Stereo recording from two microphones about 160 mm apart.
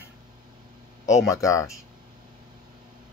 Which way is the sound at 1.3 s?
20° left (ahead or behind).